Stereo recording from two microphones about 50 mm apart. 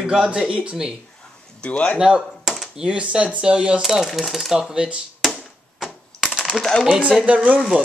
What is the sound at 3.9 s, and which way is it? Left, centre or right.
Speech, centre.